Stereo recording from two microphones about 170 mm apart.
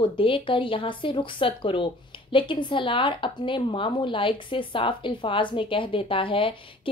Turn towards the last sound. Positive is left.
turn(degrees=30)  # may be behind; listen again after turning